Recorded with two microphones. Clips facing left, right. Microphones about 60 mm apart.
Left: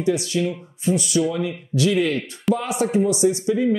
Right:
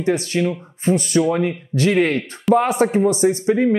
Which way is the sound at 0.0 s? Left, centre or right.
Right.